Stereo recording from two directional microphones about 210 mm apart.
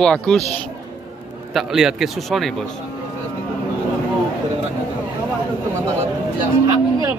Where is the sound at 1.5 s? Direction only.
Centre (ahead or behind).